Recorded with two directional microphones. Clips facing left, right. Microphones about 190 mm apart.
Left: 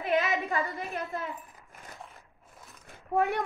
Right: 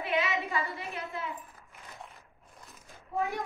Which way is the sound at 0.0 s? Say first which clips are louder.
Left 3 dB; 40° left (ahead or behind).